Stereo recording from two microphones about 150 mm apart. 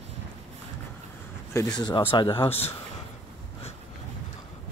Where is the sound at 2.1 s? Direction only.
35° left (ahead or behind).